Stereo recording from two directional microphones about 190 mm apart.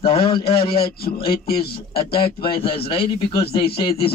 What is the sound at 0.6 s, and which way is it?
A man's voice, 55° left (ahead or behind).